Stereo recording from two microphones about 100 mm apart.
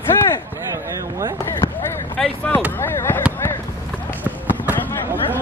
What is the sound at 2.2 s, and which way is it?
Speech, 5° left (ahead or behind).